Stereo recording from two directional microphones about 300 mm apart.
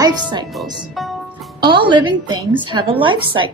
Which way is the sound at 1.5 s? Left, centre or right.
Centre.